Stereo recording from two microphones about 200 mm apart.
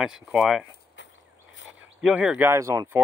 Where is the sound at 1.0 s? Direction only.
65° left (ahead or behind).